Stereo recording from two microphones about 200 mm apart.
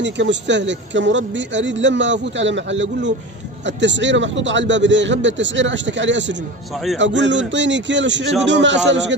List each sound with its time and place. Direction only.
0.0 s speech: 60° right (ahead or behind)
6.7 s a man's voice: centre (ahead or behind)
7.0 s speech: 65° right (ahead or behind)